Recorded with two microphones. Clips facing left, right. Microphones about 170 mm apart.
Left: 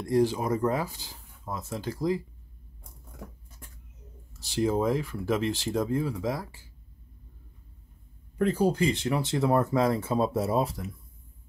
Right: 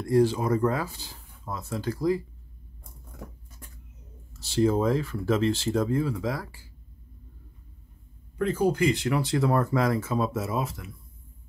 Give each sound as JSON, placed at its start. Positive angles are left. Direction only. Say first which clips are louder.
{"t": 0.0, "sound": "speech", "louder": "right 2 dB", "side_deg": 20}
{"t": 4.4, "sound": "speech", "louder": "right 3 dB", "side_deg": 15}
{"t": 8.4, "sound": "speech", "louder": "right 1 dB", "side_deg": 35}